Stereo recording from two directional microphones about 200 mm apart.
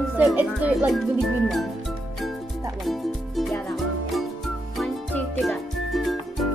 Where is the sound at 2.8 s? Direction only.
Centre (ahead or behind).